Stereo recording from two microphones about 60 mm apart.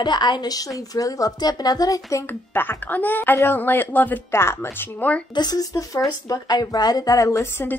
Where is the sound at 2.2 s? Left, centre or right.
Left.